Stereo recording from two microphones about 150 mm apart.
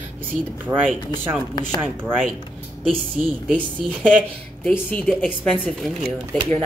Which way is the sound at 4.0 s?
10° right (ahead or behind).